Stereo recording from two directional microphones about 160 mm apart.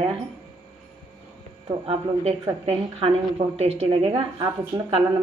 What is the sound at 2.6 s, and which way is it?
A woman's voice, 40° right (ahead or behind).